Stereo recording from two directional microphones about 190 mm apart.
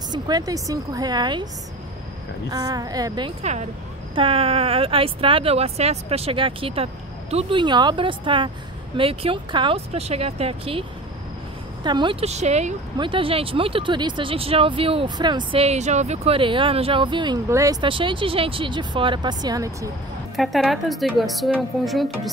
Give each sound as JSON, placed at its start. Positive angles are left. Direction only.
{"t": 0.1, "sound": "speech", "side_deg": -20}
{"t": 2.5, "sound": "speech", "side_deg": -20}
{"t": 12.9, "sound": "speech", "side_deg": -25}
{"t": 20.3, "sound": "speech", "side_deg": 0}